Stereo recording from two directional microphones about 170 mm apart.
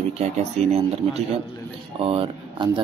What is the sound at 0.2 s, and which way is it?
Speech, 40° right (ahead or behind).